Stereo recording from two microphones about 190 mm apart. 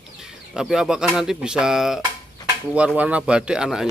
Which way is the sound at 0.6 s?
5° right (ahead or behind).